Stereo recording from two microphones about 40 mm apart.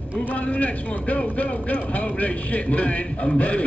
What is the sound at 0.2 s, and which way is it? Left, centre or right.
Speech, left.